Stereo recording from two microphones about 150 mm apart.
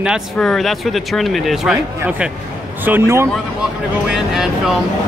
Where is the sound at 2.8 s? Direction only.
15° right (ahead or behind).